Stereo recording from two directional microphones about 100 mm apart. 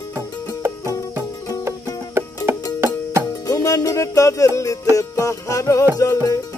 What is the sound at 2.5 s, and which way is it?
Music, 25° right (ahead or behind).